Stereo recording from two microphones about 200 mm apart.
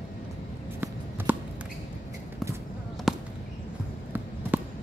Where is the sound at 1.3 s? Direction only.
10° right (ahead or behind).